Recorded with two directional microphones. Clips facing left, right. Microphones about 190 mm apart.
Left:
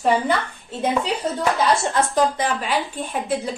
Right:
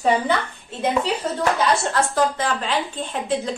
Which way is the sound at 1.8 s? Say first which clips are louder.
Left 1 dB; 15° left (ahead or behind).